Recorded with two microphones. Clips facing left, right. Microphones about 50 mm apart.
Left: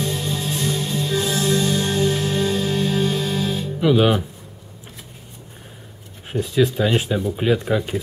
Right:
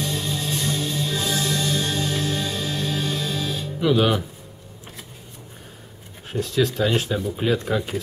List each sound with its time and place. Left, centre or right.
0.0 s music: left
3.8 s speech: centre
6.3 s speech: centre